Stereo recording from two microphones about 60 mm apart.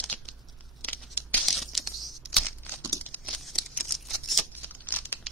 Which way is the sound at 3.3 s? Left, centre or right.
Centre.